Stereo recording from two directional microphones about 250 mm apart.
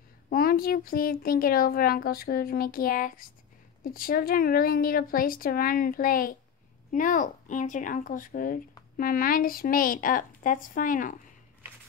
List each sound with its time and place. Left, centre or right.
0.3 s speech: left